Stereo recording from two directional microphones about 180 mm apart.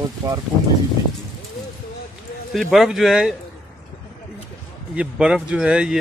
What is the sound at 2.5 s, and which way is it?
Speech, centre (ahead or behind).